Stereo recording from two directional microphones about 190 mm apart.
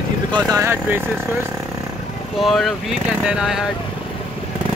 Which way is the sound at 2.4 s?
Centre (ahead or behind).